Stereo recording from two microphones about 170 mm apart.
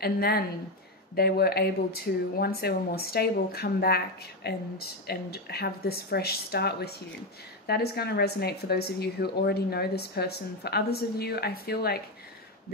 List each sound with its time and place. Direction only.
0.0 s a woman's voice: 65° left (ahead or behind)